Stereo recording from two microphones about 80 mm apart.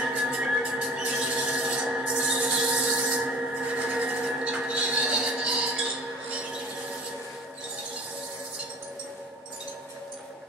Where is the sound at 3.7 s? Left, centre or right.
Centre.